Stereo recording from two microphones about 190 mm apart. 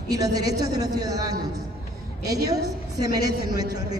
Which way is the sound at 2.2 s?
20° right (ahead or behind).